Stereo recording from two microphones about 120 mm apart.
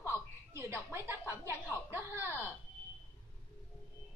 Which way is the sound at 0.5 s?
20° right (ahead or behind).